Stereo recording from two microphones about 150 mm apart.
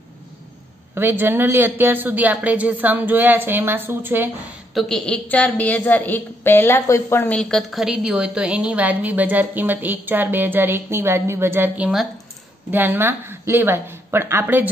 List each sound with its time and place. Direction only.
0.9 s a woman's voice: 15° right (ahead or behind)
4.7 s a woman's voice: 5° left (ahead or behind); by 14.7 s 15° right (ahead or behind)